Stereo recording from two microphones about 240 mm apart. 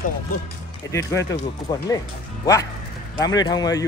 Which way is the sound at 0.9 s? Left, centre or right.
Centre.